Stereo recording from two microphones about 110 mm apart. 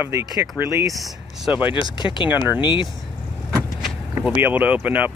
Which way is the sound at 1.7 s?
45° left (ahead or behind).